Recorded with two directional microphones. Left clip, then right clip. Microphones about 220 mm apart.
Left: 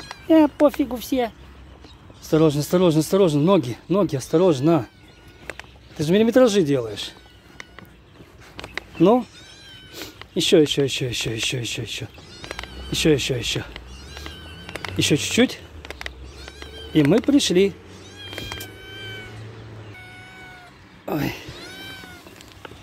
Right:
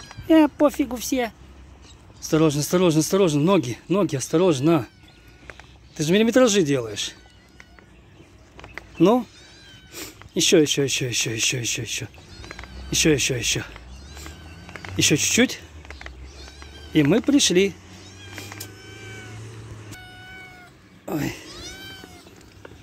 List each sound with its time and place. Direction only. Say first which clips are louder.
0.3 s speech: left 1 dB; centre (ahead or behind)
5.9 s speech: left 1 dB; centre (ahead or behind)
9.0 s speech: left 1 dB; centre (ahead or behind)
10.3 s speech: left 1 dB; centre (ahead or behind)
12.4 s cat: left 6 dB; 45° left (ahead or behind)
12.6 s speech: even; centre (ahead or behind)
14.7 s insect: left 6 dB; 50° left (ahead or behind)
15.0 s speech: even; 5° left (ahead or behind)
15.8 s a sound: left 6 dB; 50° left (ahead or behind)
16.9 s speech: left 1 dB; 5° left (ahead or behind)
21.0 s cat: left 2 dB; 5° right (ahead or behind)